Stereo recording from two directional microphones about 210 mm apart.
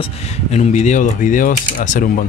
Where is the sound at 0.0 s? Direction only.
30° left (ahead or behind).